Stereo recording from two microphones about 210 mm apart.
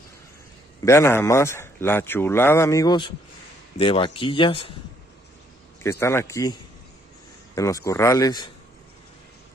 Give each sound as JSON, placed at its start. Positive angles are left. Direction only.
{"t": 0.8, "sound": "speech", "side_deg": 10}
{"t": 5.8, "sound": "speech", "side_deg": 15}